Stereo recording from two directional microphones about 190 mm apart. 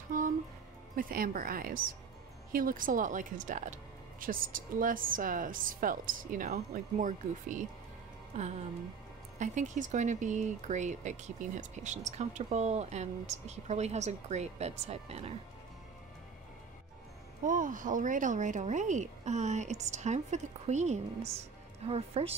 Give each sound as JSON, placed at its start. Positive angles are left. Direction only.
{"t": 0.9, "sound": "a woman's voice", "side_deg": -50}
{"t": 17.4, "sound": "speech", "side_deg": -45}